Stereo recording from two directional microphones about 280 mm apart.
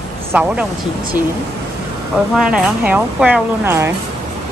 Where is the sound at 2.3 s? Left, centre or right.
Centre.